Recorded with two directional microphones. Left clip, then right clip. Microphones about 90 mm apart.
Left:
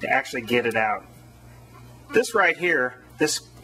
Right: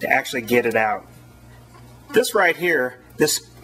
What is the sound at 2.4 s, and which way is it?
Speech, 35° right (ahead or behind).